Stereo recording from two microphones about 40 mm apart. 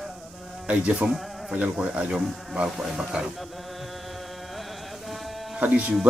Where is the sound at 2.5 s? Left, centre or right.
Centre.